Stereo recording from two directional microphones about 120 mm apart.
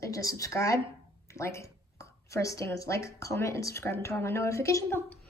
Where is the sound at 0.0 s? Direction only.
25° left (ahead or behind).